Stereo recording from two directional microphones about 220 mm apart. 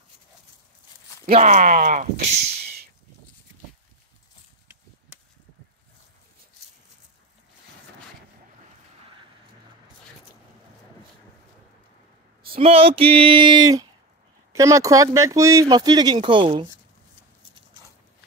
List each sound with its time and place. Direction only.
1.2 s speech: 35° right (ahead or behind)
12.4 s speech: 25° right (ahead or behind)